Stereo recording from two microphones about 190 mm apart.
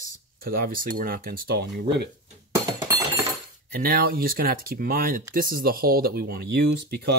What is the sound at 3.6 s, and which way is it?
Speech, 50° right (ahead or behind).